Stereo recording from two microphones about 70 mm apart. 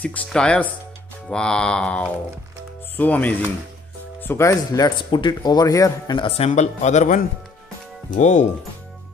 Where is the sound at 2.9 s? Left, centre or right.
Left.